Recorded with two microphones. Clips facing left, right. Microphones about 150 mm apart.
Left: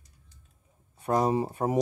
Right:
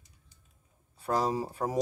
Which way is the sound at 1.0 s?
20° left (ahead or behind).